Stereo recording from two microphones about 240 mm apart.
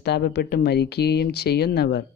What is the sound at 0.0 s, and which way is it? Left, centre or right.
Speech, left.